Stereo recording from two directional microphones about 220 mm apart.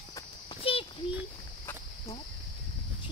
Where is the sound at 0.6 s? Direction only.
25° left (ahead or behind).